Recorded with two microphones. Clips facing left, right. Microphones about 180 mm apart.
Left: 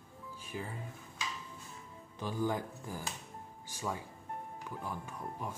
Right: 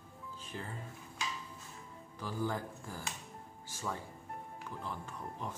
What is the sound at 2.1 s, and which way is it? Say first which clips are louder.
Speech: left 3 dB; 20° left (ahead or behind).